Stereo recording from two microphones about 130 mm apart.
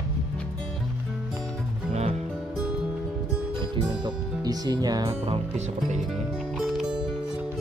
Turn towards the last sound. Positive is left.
turn(degrees=-5)  # may be behind; listen again after turning